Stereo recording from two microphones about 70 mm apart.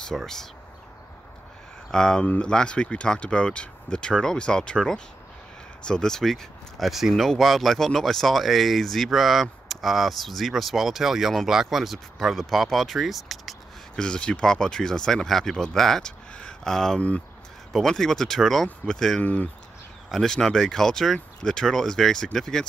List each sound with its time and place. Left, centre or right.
0.1 s speech: centre
1.9 s speech: centre
13.9 s speech: centre
19.2 s speech: left
20.1 s speech: centre